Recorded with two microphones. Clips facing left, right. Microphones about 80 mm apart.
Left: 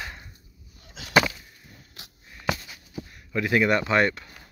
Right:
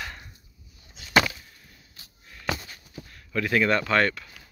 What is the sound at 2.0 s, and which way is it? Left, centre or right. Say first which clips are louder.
Sniff: left 7 dB; left.